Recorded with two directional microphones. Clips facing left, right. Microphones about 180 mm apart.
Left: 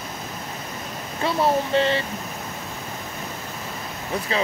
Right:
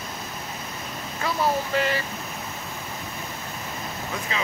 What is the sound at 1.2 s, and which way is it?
Speech, 25° left (ahead or behind).